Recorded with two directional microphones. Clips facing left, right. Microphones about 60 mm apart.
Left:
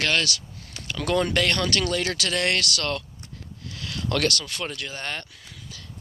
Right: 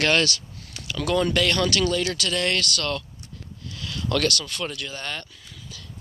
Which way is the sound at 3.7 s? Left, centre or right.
Left.